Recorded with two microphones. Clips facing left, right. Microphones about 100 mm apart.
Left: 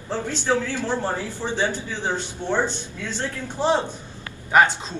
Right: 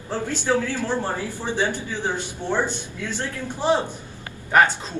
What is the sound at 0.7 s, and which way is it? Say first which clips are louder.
Speech: even; 15° left (ahead or behind).